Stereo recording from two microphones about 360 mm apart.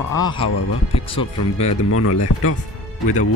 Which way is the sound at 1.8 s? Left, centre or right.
Left.